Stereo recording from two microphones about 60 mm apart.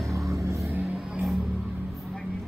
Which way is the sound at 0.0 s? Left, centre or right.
Right.